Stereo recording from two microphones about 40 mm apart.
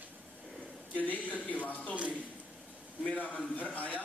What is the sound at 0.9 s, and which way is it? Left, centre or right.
Speech, left.